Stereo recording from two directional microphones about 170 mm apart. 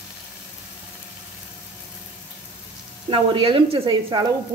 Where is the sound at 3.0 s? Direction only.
30° right (ahead or behind).